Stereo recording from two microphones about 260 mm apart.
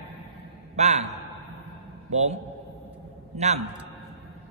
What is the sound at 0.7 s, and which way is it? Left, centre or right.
A man's voice, right.